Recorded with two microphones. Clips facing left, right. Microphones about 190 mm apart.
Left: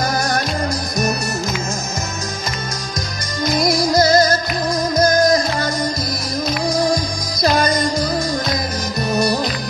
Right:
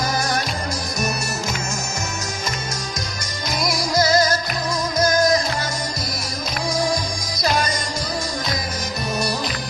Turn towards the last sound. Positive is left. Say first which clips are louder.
# left 6 dB
turn(degrees=55)  # may be behind; listen again after turning